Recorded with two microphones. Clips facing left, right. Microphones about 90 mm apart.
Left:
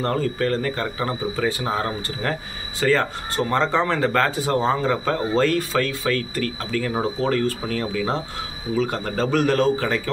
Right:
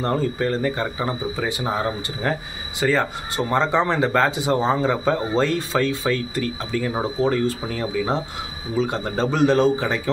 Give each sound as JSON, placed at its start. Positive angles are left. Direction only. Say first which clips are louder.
{"t": 0.0, "sound": "speech", "louder": "even", "side_deg": -20}